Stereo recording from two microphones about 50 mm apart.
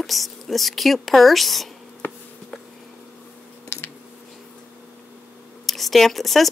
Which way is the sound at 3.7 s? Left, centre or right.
Left.